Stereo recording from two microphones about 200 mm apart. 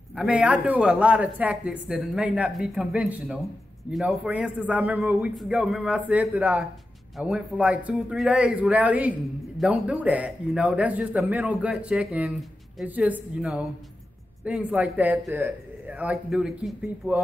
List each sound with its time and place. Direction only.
0.1 s a man's voice: 5° right (ahead or behind)